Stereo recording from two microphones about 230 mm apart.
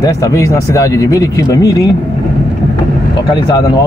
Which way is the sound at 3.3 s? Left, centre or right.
Centre.